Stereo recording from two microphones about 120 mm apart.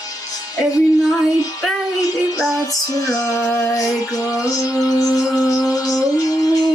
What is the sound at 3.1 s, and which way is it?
Music, 30° left (ahead or behind).